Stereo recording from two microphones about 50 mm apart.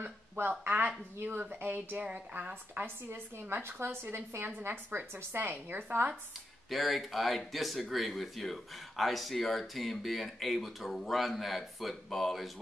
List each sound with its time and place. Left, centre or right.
0.0 s a woman's voice: right
2.0 s a woman's voice: right
2.8 s a woman's voice: right
6.7 s speech: centre